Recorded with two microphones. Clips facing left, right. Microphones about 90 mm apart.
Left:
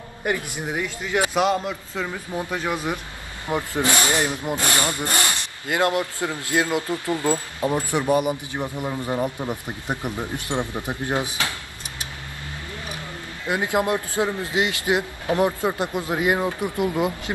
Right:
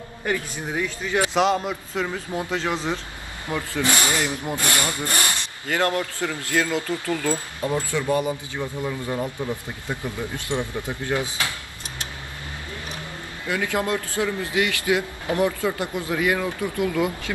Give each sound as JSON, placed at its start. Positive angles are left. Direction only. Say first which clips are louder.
{"t": 0.2, "sound": "a man's voice", "louder": "left 1 dB", "side_deg": 15}
{"t": 1.5, "sound": "a man's voice", "louder": "even", "side_deg": -20}
{"t": 2.5, "sound": "a man's voice", "louder": "right 1 dB", "side_deg": 10}
{"t": 13.5, "sound": "a man's voice", "louder": "left 2 dB", "side_deg": 20}